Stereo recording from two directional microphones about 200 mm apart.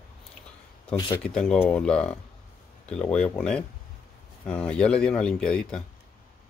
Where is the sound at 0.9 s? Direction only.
20° left (ahead or behind).